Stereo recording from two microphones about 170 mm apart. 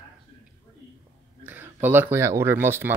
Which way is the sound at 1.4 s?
10° right (ahead or behind).